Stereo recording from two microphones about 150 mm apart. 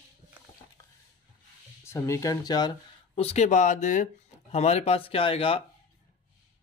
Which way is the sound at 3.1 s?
45° left (ahead or behind).